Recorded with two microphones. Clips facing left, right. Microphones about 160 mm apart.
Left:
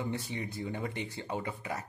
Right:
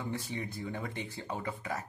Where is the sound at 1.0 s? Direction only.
20° left (ahead or behind).